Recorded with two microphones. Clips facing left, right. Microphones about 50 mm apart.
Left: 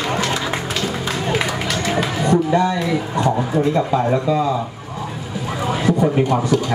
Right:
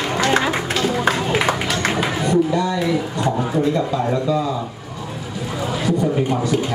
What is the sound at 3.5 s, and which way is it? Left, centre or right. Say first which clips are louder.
Speech: even; left.